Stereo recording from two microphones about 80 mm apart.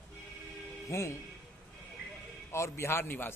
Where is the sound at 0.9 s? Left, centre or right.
Left.